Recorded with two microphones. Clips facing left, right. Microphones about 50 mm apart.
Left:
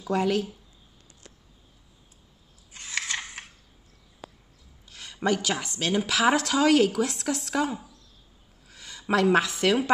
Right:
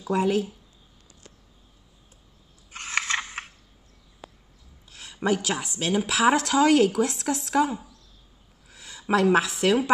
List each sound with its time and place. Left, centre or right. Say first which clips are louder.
0.0 s speech: right 1 dB; centre
2.7 s scissors: right 5 dB; right
4.8 s a woman's voice: right 1 dB; centre